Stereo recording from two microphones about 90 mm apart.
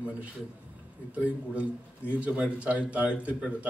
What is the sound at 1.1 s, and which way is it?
A man's voice, 15° right (ahead or behind).